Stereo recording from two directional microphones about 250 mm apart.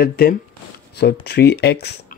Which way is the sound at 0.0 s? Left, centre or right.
Left.